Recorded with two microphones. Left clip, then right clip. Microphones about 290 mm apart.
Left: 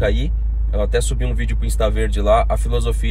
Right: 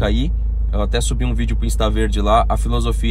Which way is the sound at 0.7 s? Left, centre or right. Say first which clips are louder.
Left 2 dB; centre.